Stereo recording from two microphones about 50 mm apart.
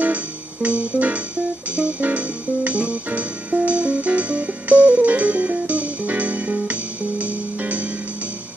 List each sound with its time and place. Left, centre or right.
0.0 s music: right